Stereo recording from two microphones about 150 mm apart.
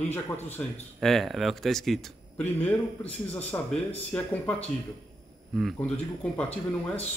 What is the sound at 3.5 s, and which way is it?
Speech, 15° left (ahead or behind).